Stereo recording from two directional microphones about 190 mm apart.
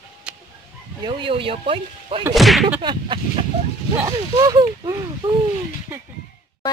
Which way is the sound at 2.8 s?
25° right (ahead or behind).